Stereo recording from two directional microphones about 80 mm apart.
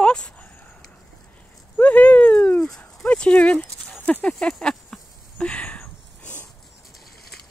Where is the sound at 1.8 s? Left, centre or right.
Centre.